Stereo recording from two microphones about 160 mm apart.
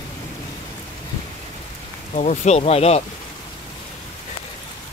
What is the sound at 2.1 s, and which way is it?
Speech, 50° left (ahead or behind).